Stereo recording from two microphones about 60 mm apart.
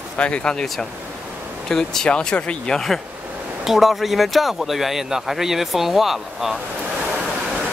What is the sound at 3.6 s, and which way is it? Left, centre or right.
Speech, centre.